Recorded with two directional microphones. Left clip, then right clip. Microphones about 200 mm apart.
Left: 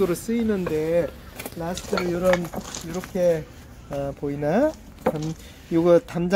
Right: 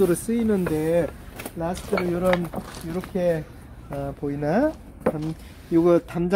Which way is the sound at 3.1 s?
20° left (ahead or behind).